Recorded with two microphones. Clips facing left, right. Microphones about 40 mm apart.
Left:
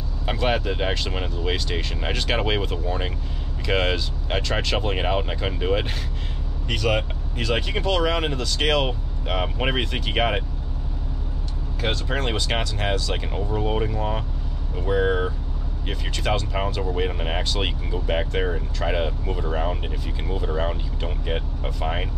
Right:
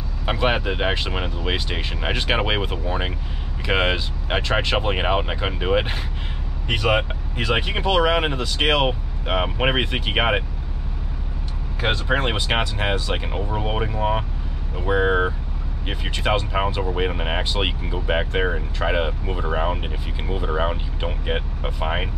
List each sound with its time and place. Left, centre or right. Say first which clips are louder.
0.2 s speech: right 2 dB; right
11.8 s speech: right 4 dB; right